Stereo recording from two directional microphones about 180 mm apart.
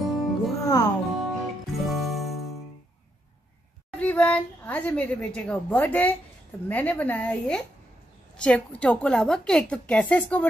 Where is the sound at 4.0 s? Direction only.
5° left (ahead or behind).